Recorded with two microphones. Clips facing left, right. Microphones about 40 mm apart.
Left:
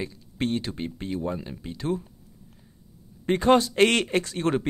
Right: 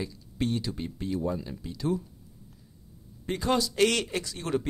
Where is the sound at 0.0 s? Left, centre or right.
Left.